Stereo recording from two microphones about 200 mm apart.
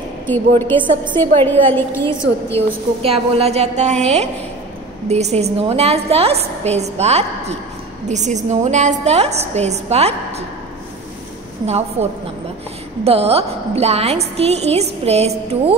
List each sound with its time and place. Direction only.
0.6 s a woman's voice: 10° left (ahead or behind)
3.0 s a woman's voice: 30° right (ahead or behind)
11.6 s a woman's voice: 35° right (ahead or behind)